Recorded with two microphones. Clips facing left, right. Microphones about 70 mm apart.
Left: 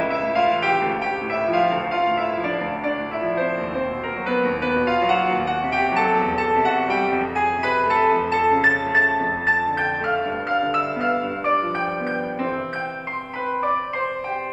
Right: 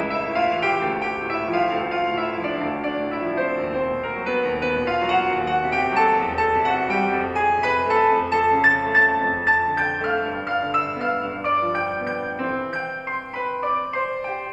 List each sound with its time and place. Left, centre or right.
0.4 s music: centre
4.4 s music: left
4.9 s music: centre
10.7 s music: centre